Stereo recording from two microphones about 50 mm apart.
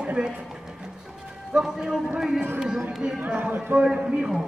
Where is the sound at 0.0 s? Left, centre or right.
Right.